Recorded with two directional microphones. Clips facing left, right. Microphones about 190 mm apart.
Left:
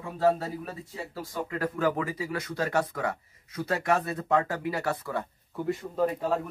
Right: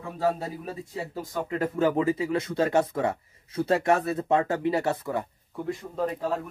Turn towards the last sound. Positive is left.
turn(degrees=5)  # may be behind; listen again after turning